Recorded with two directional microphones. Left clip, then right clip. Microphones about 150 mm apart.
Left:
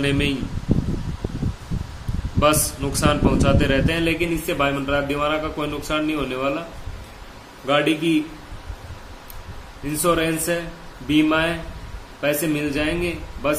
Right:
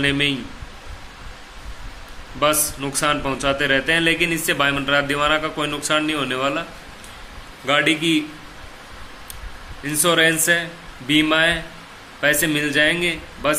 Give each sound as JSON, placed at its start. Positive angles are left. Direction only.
{"t": 0.0, "sound": "a man's voice", "side_deg": 5}
{"t": 2.4, "sound": "a man's voice", "side_deg": 5}
{"t": 7.6, "sound": "a man's voice", "side_deg": 0}
{"t": 9.8, "sound": "a man's voice", "side_deg": 0}